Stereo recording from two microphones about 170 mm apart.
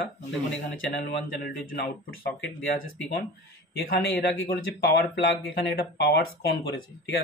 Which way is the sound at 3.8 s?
85° left.